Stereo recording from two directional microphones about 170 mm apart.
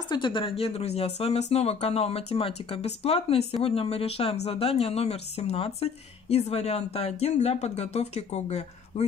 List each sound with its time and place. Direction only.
0.1 s speech: 30° left (ahead or behind)